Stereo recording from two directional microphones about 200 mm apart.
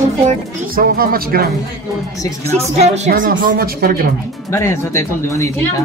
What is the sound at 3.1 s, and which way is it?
Speech, 45° right (ahead or behind).